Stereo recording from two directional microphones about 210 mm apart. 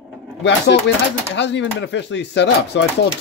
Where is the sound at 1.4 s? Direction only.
55° left (ahead or behind).